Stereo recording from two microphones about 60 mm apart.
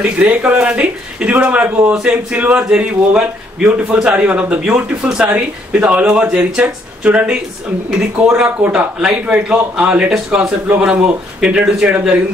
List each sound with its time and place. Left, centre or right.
0.0 s a man's voice: right
8.4 s a man's voice: centre